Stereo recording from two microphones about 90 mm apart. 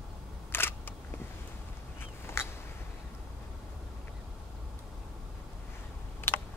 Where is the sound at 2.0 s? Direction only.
25° left (ahead or behind).